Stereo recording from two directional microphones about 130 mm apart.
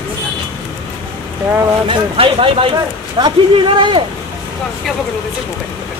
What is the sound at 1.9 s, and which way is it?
Speech, 45° right (ahead or behind).